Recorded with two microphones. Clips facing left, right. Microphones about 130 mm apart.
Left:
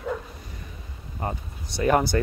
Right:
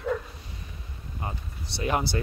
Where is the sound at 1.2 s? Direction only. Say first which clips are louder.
Left 6 dB; 45° left (ahead or behind).